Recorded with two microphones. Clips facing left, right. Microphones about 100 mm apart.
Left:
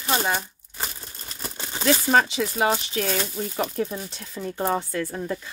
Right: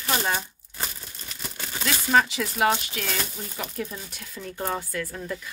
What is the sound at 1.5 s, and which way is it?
Speech, 25° left (ahead or behind).